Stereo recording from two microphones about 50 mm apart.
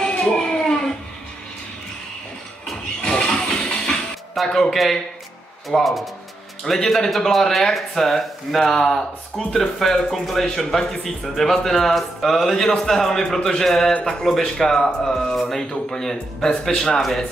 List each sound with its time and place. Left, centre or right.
0.0 s a sound: centre
3.0 s music: centre
4.4 s a man's voice: centre